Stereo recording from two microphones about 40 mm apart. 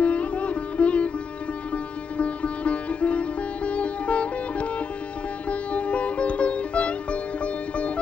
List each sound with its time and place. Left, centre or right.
0.0 s sitar: left
1.7 s music: left